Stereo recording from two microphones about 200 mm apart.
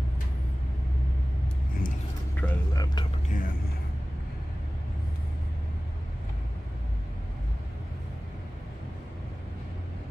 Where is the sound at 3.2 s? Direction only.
40° left (ahead or behind).